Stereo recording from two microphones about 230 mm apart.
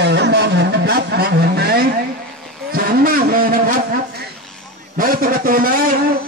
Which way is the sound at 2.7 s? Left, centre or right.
Right.